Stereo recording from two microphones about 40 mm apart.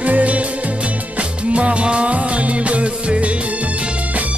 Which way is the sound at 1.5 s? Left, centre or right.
Right.